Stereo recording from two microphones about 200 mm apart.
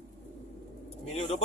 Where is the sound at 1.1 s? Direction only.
30° left (ahead or behind).